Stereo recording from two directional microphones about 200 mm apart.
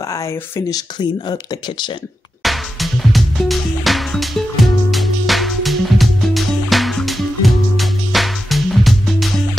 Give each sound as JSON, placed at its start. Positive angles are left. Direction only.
{"t": 0.1, "sound": "speech", "side_deg": 15}
{"t": 2.4, "sound": "music", "side_deg": 0}